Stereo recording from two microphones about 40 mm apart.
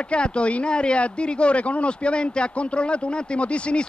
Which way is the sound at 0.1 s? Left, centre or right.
Left.